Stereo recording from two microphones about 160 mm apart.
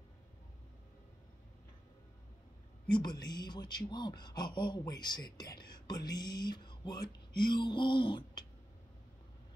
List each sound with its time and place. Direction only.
2.9 s speech: 25° left (ahead or behind)